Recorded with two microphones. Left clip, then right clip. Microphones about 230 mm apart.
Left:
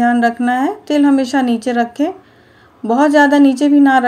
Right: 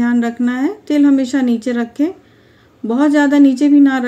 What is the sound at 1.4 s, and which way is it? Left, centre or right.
Speech, left.